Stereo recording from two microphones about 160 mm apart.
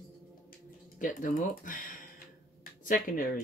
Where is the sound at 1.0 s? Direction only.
55° left (ahead or behind).